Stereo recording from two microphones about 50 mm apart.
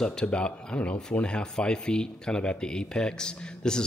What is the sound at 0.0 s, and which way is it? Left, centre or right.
Speech, centre.